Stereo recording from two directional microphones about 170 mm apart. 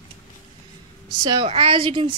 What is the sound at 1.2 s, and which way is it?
Speech, 25° right (ahead or behind).